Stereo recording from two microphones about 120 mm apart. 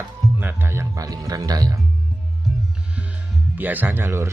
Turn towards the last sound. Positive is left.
turn(degrees=-20)  # may be behind; listen again after turning